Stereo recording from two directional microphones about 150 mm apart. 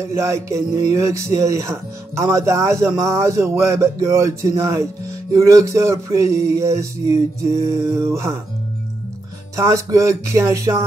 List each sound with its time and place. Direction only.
0.1 s speech: 20° right (ahead or behind)
9.6 s speech: 20° right (ahead or behind)